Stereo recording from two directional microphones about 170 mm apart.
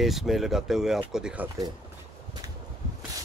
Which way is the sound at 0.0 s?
Centre (ahead or behind).